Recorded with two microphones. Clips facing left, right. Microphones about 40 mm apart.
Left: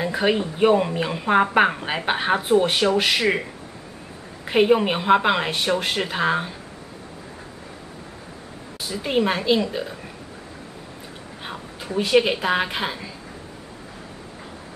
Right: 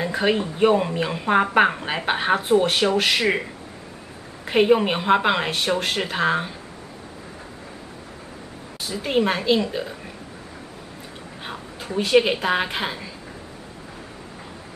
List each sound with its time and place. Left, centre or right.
0.0 s speech: centre
4.5 s speech: centre
8.8 s speech: centre
11.4 s a woman's voice: centre